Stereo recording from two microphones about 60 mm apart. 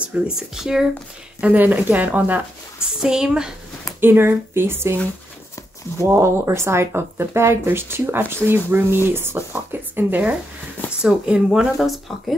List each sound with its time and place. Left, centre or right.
0.0 s speech: centre
1.4 s speech: right
3.0 s speech: centre
4.0 s speech: right
5.9 s speech: right
11.0 s speech: centre
11.7 s speech: centre